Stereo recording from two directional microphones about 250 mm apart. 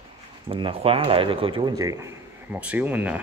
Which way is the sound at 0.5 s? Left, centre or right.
Right.